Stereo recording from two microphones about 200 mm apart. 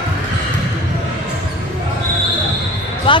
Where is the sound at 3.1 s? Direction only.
25° left (ahead or behind).